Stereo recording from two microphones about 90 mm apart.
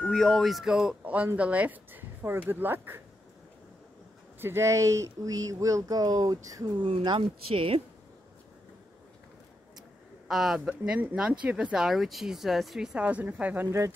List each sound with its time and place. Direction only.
0.0 s speech: 5° left (ahead or behind); by 3.0 s 25° right (ahead or behind)
4.4 s speech: 30° right (ahead or behind); by 6.7 s 45° right (ahead or behind)
6.8 s speech: 65° right (ahead or behind); by 7.8 s 85° right
10.2 s speech: 5° right (ahead or behind)
10.8 s a woman's voice: 15° right (ahead or behind)
13.0 s a woman's voice: 15° right (ahead or behind)
13.7 s speech: 30° right (ahead or behind)